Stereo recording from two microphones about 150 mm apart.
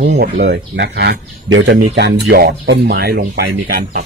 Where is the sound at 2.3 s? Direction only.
90° right.